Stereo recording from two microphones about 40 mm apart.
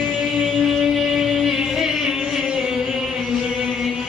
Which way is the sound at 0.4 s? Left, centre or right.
Centre.